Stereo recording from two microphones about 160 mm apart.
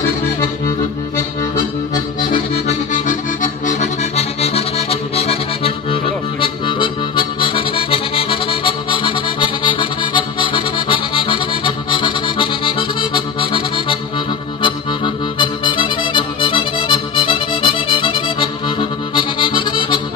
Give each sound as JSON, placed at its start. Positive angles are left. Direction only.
{"t": 3.6, "sound": "accordion", "side_deg": 45}
{"t": 6.4, "sound": "music", "side_deg": 30}